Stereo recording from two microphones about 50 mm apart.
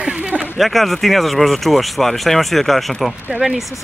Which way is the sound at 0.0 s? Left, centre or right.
Centre.